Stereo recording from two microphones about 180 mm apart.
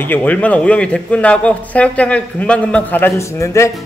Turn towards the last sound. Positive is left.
turn(degrees=15)  # may be behind; listen again after turning